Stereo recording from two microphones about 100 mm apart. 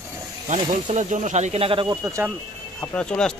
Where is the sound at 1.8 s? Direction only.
35° right (ahead or behind).